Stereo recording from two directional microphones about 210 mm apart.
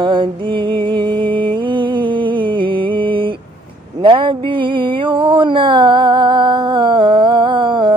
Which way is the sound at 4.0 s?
25° right (ahead or behind).